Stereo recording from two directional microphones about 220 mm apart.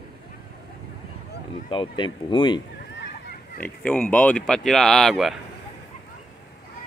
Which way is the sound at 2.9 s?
55° left (ahead or behind).